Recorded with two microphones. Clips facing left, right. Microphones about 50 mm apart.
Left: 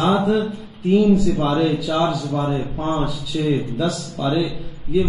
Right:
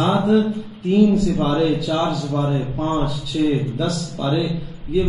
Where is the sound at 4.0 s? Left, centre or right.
Centre.